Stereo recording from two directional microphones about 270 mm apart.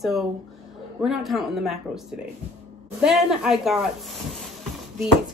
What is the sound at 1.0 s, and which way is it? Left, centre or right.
Speech, centre.